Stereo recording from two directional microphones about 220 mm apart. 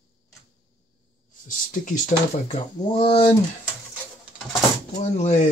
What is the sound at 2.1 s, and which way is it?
Speech, 45° left (ahead or behind).